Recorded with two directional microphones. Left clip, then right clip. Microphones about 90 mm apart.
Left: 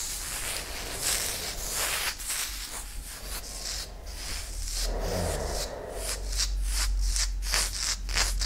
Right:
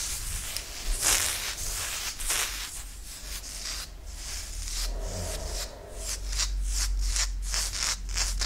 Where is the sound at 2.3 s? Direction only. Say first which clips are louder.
Right 4 dB; 45° right (ahead or behind).